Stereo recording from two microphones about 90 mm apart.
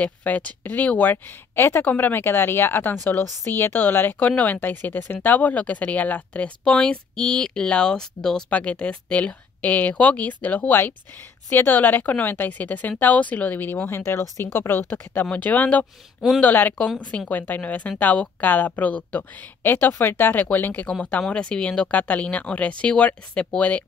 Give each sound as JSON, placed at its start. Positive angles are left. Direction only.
{"t": 0.0, "sound": "speech", "side_deg": 15}